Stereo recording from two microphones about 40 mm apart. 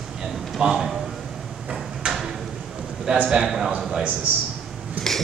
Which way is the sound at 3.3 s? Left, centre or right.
Centre.